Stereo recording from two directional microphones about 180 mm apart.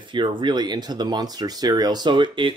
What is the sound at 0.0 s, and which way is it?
Speech, 25° right (ahead or behind).